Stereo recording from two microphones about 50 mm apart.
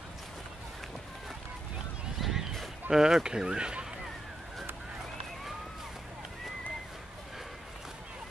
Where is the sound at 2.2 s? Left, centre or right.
Centre.